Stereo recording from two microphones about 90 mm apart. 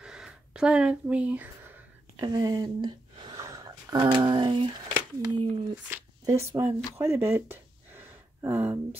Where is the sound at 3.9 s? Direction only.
60° right (ahead or behind).